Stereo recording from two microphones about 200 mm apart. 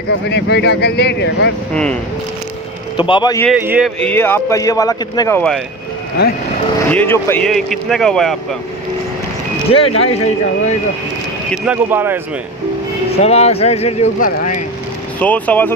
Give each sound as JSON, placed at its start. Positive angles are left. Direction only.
{"t": 0.3, "sound": "speech", "side_deg": 55}
{"t": 3.0, "sound": "speech", "side_deg": 25}
{"t": 3.5, "sound": "speech", "side_deg": -5}
{"t": 4.0, "sound": "a man's voice", "side_deg": 10}
{"t": 6.9, "sound": "speech", "side_deg": 10}
{"t": 9.7, "sound": "speech", "side_deg": 30}
{"t": 11.5, "sound": "speech", "side_deg": -5}
{"t": 13.2, "sound": "speech", "side_deg": 30}
{"t": 15.1, "sound": "a man's voice", "side_deg": 10}